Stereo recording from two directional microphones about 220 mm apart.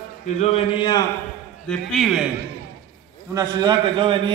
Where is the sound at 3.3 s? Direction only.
20° right (ahead or behind).